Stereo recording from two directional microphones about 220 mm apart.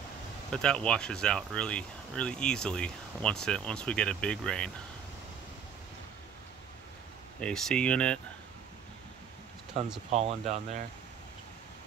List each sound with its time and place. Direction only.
0.5 s speech: 5° left (ahead or behind)
7.3 s speech: 5° left (ahead or behind)
10.1 s speech: 30° right (ahead or behind)